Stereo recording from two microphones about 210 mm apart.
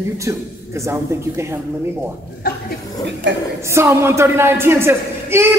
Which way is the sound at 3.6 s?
15° right (ahead or behind).